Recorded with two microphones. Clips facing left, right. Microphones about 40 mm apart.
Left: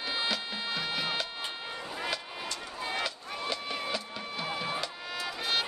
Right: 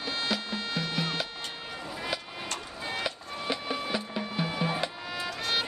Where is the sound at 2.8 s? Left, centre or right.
Centre.